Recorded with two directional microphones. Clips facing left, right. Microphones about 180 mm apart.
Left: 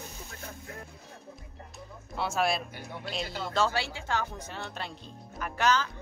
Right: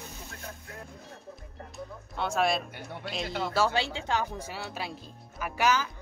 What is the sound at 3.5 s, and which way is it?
Speech, 15° right (ahead or behind).